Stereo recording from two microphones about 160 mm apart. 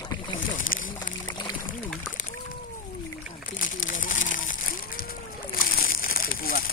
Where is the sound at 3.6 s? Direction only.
55° left (ahead or behind).